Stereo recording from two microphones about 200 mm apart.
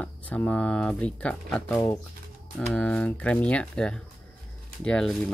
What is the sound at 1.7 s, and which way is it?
Speech, 15° left (ahead or behind).